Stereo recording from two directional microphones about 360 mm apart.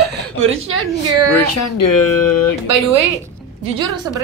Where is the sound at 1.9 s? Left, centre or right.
Left.